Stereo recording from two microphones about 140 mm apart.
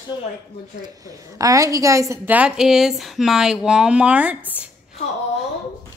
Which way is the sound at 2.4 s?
5° right (ahead or behind).